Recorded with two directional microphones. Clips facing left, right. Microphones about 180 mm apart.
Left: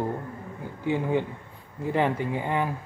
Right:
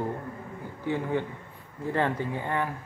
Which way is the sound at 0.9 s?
15° left (ahead or behind).